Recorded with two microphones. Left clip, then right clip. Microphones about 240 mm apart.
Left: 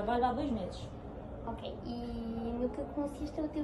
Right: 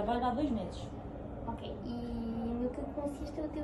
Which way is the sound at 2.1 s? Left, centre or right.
Centre.